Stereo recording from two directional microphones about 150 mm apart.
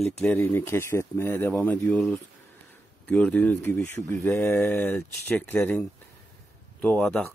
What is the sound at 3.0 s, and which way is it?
Speech, 10° left (ahead or behind).